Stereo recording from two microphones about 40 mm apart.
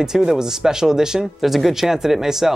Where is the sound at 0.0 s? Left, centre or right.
Centre.